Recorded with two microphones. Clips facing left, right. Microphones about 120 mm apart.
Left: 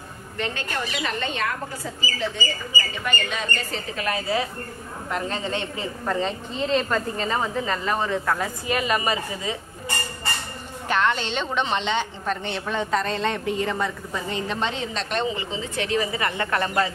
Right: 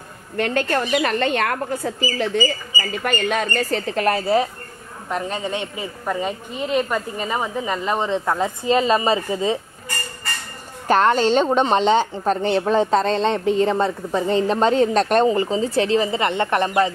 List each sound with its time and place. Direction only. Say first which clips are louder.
0.4 s speech: right 8 dB; 55° right (ahead or behind)
5.1 s a woman's voice: right 3 dB; 15° right (ahead or behind)
10.9 s a woman's voice: right 7 dB; 40° right (ahead or behind); by 16.9 s 20° right (ahead or behind)